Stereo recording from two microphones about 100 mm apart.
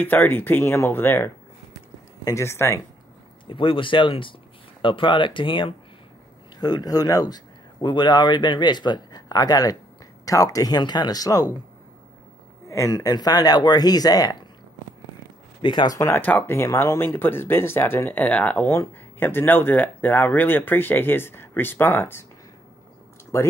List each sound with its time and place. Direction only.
0.0 s speech: 20° left (ahead or behind)
3.4 s speech: 60° left (ahead or behind)
6.6 s speech: 40° left (ahead or behind)
12.6 s speech: 30° left (ahead or behind)
15.6 s speech: 50° left (ahead or behind)
16.0 s speech: 20° left (ahead or behind)
23.3 s speech: 30° left (ahead or behind)